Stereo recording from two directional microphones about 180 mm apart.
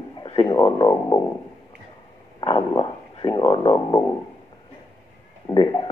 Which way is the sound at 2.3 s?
25° left (ahead or behind).